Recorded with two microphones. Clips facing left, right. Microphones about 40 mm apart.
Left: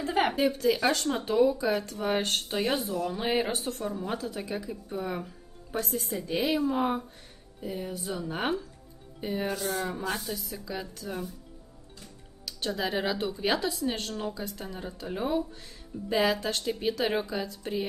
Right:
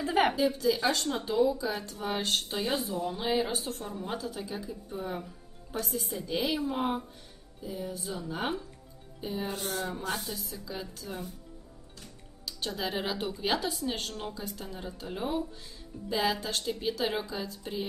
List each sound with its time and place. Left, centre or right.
0.0 s a woman's voice: centre
0.4 s speech: left
2.9 s speech: left
3.2 s speech: left
6.7 s speech: left
7.6 s speech: left
12.6 s speech: left
16.1 s speech: left